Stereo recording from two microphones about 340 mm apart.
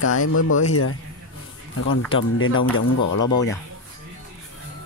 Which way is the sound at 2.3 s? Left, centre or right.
Left.